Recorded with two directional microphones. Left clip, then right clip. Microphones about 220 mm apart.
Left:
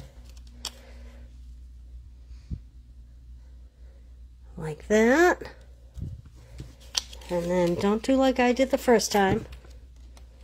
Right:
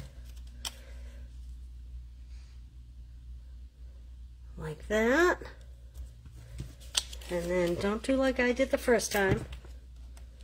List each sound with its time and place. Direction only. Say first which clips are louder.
4.6 s speech: left 7 dB; 35° left (ahead or behind)
6.9 s a sound: left 2 dB; 10° left (ahead or behind)
7.3 s speech: left 5 dB; 35° left (ahead or behind)